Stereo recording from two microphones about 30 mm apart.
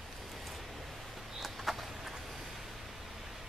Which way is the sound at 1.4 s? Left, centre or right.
Centre.